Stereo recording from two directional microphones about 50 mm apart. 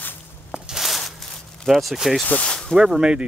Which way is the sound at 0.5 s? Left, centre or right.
Centre.